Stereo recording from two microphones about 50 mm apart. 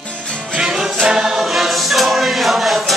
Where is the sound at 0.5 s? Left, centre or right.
Centre.